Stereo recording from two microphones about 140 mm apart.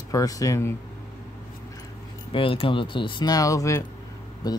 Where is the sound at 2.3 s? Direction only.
40° left (ahead or behind).